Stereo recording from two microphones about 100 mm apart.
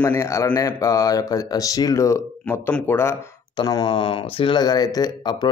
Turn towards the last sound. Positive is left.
turn(degrees=45)  # may be behind; listen again after turning